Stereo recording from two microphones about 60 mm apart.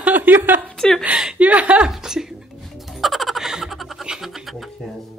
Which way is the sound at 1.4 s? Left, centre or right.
Right.